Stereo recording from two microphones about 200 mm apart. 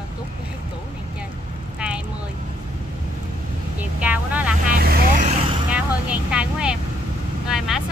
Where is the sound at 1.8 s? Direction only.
5° right (ahead or behind).